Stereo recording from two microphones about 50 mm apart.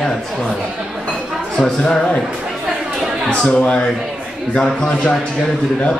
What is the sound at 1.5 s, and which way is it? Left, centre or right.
Speech, centre.